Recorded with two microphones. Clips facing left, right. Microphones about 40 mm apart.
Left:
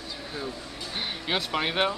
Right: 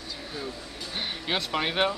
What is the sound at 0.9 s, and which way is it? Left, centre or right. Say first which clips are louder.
Speech: even; centre.